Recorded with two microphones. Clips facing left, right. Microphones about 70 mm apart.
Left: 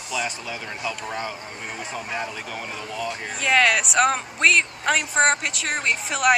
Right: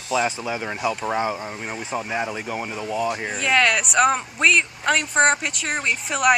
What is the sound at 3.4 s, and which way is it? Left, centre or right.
Speech, centre.